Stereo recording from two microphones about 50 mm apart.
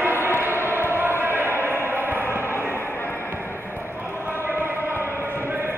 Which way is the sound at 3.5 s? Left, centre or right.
Right.